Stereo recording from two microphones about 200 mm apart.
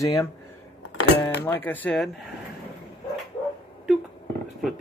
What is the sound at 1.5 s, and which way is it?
Speech, 10° left (ahead or behind).